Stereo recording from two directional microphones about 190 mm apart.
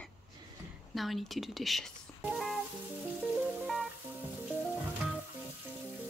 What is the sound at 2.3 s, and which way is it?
Music, centre (ahead or behind).